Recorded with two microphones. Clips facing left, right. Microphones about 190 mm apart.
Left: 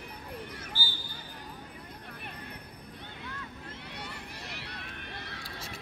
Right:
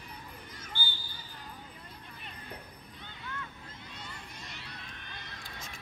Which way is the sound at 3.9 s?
65° left (ahead or behind).